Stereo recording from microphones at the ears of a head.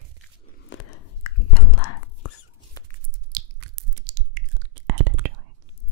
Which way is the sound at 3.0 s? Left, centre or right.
Right.